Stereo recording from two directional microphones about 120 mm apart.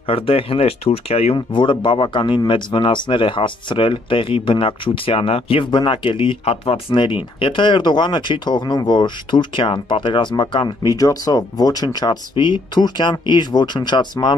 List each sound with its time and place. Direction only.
0.0 s speech: 50° left (ahead or behind)
1.3 s speech: 45° left (ahead or behind)
10.9 s speech: 30° left (ahead or behind)